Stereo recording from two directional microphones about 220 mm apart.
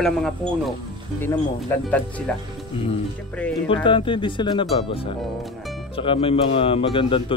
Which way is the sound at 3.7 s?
25° left (ahead or behind).